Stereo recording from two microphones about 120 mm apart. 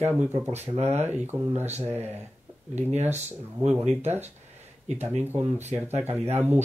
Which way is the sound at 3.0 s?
20° right (ahead or behind).